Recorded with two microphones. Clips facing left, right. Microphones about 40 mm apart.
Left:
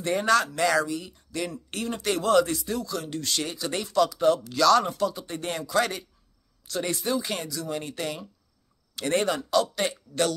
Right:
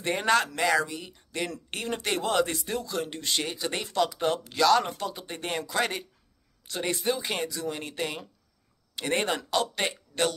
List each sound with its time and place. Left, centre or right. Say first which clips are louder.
0.0 s speech: left 2 dB; right
0.6 s speech: left 2 dB; centre
1.1 s speech: left 1 dB; right